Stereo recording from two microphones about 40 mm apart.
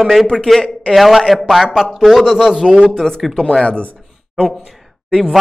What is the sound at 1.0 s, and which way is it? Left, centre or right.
A man's voice, centre.